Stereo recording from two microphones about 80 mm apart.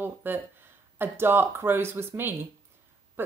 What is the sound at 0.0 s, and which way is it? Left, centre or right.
Speech, right.